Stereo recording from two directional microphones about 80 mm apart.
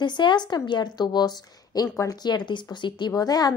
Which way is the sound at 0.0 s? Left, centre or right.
Left.